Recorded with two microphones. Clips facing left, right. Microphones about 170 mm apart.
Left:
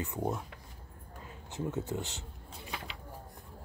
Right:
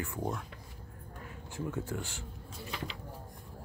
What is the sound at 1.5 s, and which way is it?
Speech, 20° left (ahead or behind).